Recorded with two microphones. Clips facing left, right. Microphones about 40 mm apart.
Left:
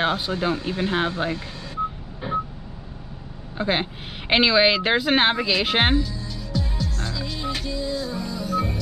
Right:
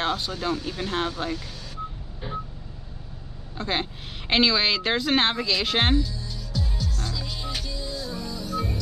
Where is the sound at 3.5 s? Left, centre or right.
Centre.